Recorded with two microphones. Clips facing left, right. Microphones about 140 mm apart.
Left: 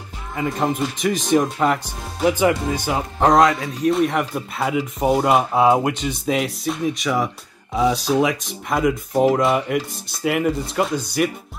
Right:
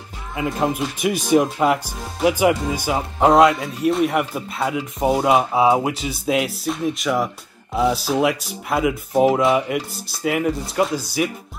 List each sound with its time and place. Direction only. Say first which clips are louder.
0.4 s speech: even; 5° right (ahead or behind)